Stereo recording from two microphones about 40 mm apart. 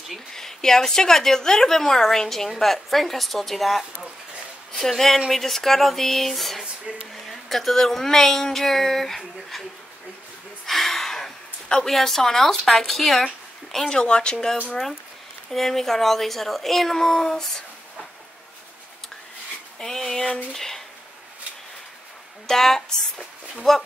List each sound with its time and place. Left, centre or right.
0.3 s a woman's voice: centre
10.7 s gasp: centre
11.9 s speech: centre
13.7 s speech: centre
15.5 s a woman's voice: centre
19.8 s a woman's voice: centre
22.5 s a woman's voice: centre